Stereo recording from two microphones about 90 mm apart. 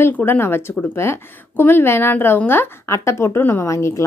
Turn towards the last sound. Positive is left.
turn(degrees=35)  # may be behind; listen again after turning